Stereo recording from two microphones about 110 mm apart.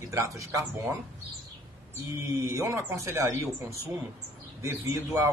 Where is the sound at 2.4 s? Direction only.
30° right (ahead or behind).